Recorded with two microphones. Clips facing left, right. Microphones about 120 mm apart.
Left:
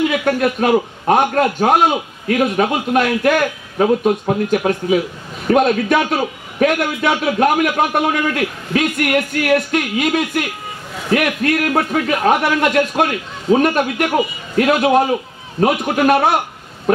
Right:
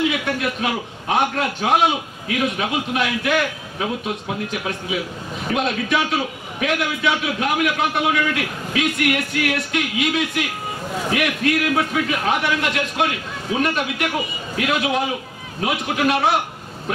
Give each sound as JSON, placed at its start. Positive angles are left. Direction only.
{"t": 0.1, "sound": "a man's voice", "side_deg": 45}